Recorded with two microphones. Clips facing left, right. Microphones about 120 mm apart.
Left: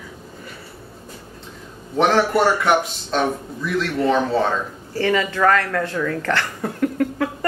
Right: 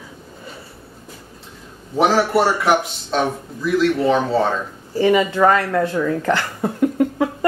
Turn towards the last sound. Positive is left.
turn(degrees=-20)  # may be behind; listen again after turning